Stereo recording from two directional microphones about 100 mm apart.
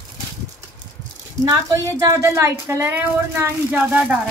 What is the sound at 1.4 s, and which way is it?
A woman's voice, 40° right (ahead or behind).